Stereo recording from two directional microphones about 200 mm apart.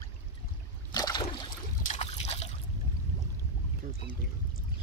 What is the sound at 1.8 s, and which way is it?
Trickle, 35° left (ahead or behind).